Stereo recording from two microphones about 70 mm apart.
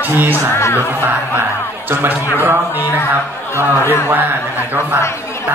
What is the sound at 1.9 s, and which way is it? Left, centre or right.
Speech, right.